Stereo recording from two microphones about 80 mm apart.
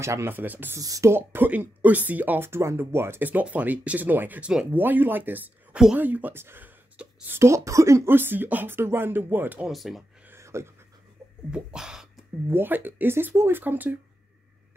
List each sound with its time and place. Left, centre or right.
0.0 s speech: right
0.7 s speech: right
1.1 s speech: right
8.1 s speech: right
9.7 s speech: centre
10.2 s a sound: right
11.5 s a sound: centre
12.4 s speech: right